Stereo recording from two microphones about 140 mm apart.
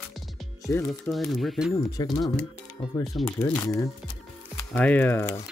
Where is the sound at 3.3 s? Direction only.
15° left (ahead or behind).